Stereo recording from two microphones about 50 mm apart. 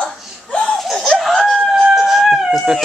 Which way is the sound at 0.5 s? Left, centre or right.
Centre.